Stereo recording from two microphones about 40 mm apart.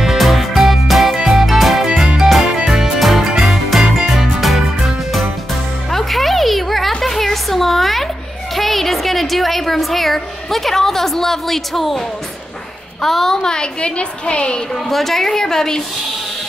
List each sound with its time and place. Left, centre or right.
0.0 s music: centre
5.9 s music: centre
7.0 s a sound: centre
13.0 s a woman's voice: centre; by 14.6 s left
14.7 s a woman's voice: centre